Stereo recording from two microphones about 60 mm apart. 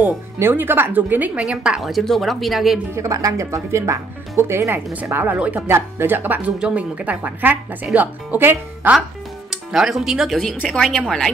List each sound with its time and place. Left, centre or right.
0.4 s a woman's voice: right
1.4 s a woman's voice: centre
1.8 s speech: centre
2.9 s speech: right
5.1 s a woman's voice: right
5.7 s a woman's voice: right
6.6 s a woman's voice: centre
9.5 s speech: centre
10.7 s a woman's voice: centre